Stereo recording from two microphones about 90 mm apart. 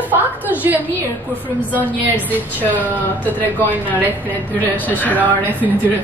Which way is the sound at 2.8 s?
20° left (ahead or behind).